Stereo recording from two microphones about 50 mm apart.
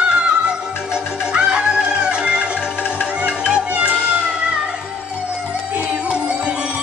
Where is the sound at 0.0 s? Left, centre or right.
Right.